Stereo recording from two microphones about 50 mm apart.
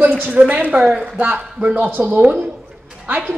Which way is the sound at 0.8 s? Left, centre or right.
Centre.